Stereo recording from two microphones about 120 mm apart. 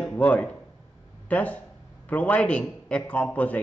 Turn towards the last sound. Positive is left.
turn(degrees=10)  # may be behind; listen again after turning